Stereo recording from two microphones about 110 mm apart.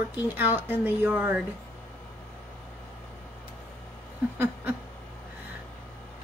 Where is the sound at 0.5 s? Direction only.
20° right (ahead or behind).